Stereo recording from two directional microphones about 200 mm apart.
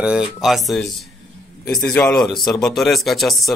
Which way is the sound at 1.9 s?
Centre (ahead or behind).